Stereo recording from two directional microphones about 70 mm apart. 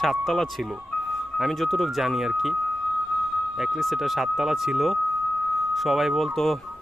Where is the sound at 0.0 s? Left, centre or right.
Centre.